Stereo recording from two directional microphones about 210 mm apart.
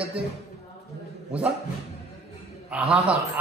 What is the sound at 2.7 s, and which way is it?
Speech, 5° right (ahead or behind).